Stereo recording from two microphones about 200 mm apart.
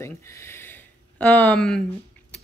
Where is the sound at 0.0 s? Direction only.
15° left (ahead or behind).